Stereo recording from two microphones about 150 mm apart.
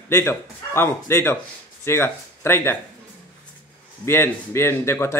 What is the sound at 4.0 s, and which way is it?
A man's voice, 15° left (ahead or behind).